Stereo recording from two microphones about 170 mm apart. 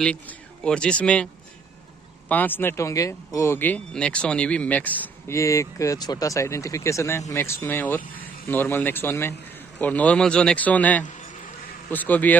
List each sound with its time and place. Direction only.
0.7 s speech: 5° left (ahead or behind)